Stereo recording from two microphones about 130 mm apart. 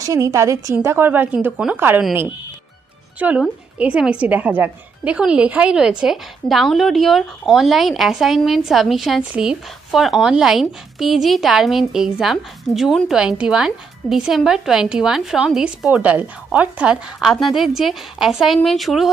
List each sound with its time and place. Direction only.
0.0 s a woman's voice: 25° right (ahead or behind)
3.2 s a woman's voice: 10° right (ahead or behind)